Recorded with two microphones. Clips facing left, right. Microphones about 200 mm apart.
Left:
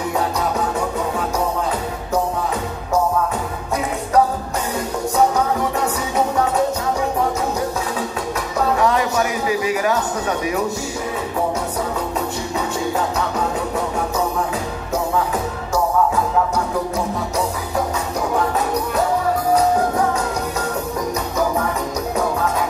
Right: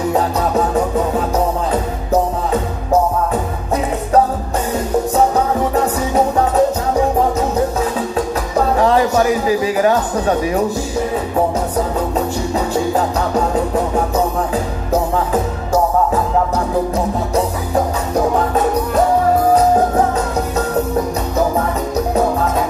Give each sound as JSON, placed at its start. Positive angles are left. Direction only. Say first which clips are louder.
{"t": 8.7, "sound": "music", "louder": "right 6 dB", "side_deg": -30}